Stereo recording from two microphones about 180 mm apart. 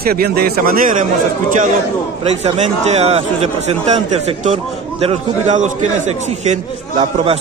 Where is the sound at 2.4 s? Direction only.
35° right (ahead or behind).